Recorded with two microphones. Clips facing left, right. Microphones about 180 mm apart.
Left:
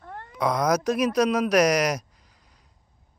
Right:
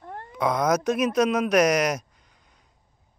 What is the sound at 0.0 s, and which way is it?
Cat, 15° right (ahead or behind).